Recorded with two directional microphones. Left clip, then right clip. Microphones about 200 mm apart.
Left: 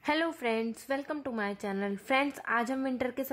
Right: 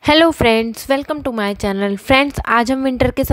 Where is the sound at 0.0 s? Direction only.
45° right (ahead or behind).